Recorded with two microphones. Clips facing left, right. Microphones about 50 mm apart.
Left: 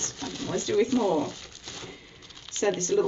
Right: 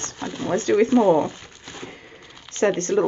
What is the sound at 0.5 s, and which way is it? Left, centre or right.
Speech, right.